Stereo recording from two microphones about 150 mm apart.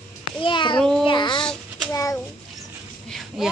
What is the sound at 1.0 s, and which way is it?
A child's voice, 30° left (ahead or behind).